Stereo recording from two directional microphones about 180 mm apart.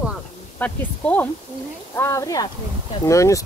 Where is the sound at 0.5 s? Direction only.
10° left (ahead or behind).